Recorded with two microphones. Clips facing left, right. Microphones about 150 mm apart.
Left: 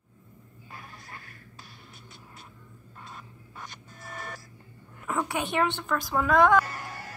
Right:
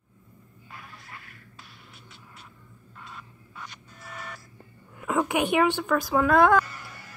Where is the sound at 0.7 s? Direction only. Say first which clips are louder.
Even; 35° left (ahead or behind).